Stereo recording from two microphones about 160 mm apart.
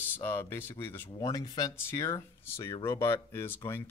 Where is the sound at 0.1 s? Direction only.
15° left (ahead or behind).